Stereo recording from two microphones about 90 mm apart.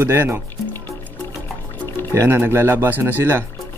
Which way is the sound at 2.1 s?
35° right (ahead or behind).